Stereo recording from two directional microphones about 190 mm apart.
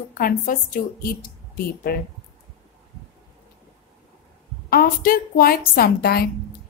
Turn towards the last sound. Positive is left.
turn(degrees=55)  # may be behind; listen again after turning